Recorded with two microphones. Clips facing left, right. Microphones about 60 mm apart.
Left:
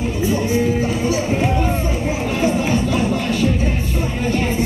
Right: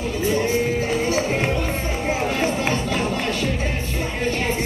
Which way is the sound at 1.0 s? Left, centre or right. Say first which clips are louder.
Left 3 dB; right.